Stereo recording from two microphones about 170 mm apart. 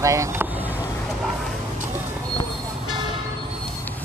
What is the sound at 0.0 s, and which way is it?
Speech, 15° right (ahead or behind).